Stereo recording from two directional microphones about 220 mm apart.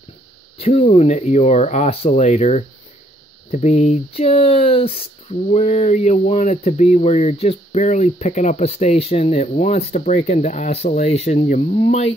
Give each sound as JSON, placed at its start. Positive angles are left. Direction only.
{"t": 0.6, "sound": "speech", "side_deg": 25}